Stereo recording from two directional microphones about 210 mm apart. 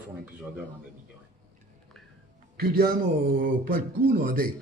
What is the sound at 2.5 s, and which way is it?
Speech, 45° right (ahead or behind).